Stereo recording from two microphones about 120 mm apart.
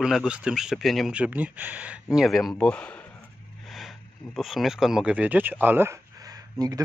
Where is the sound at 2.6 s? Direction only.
10° left (ahead or behind).